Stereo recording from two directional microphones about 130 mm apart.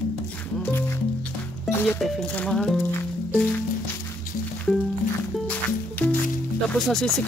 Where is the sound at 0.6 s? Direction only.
15° left (ahead or behind).